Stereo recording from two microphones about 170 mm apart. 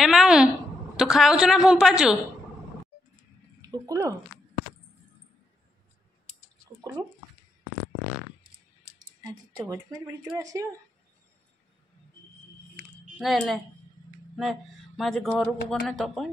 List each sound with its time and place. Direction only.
0.0 s a woman's voice: centre (ahead or behind)
3.6 s speech: 20° right (ahead or behind)
9.2 s speech: 20° right (ahead or behind)
13.2 s a woman's voice: centre (ahead or behind)